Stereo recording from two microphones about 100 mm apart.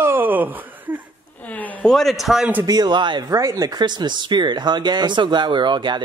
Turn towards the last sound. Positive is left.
turn(degrees=-50)  # may be behind; listen again after turning